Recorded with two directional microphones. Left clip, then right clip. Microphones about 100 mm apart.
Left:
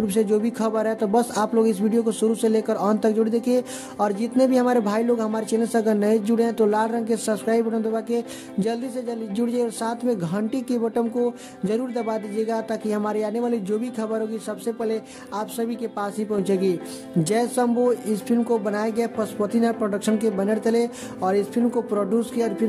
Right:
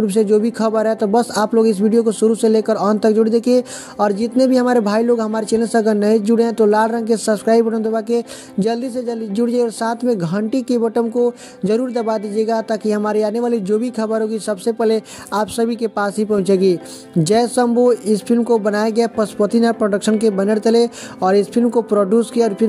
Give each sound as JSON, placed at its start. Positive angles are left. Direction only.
{"t": 0.0, "sound": "speech", "side_deg": -35}